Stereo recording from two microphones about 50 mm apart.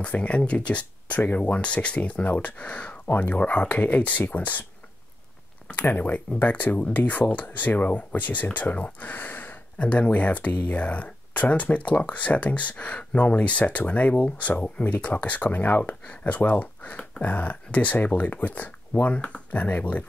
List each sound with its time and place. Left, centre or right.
0.0 s speech: left
5.7 s speech: left
9.8 s speech: left